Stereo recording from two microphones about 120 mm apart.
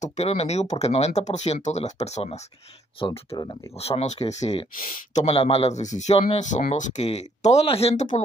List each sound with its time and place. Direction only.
0.0 s speech: 70° left (ahead or behind)
3.1 s speech: 35° left (ahead or behind)
3.7 s speech: 60° left (ahead or behind); by 6.1 s 75° left (ahead or behind)
6.1 s speech: 50° left (ahead or behind)
6.4 s speech: 90° left; by 8.2 s 70° left (ahead or behind)